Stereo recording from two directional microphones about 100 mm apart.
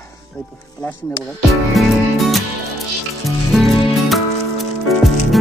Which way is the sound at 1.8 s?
Centre (ahead or behind).